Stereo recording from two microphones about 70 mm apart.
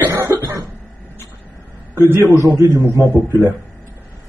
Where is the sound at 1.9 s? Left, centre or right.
Right.